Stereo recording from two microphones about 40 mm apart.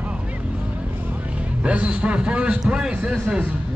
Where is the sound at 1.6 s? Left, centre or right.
Right.